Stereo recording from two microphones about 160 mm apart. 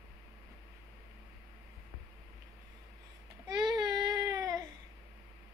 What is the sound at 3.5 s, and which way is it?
Baby cry, 25° right (ahead or behind).